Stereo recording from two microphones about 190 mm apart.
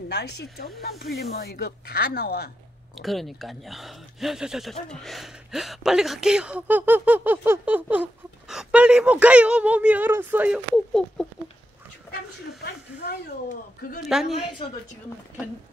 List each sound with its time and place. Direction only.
0.1 s speech: 60° left (ahead or behind)
3.0 s speech: centre (ahead or behind)
10.9 s speech: centre (ahead or behind)
12.5 s speech: 60° left (ahead or behind)
14.1 s speech: 5° right (ahead or behind)
14.6 s speech: 25° left (ahead or behind)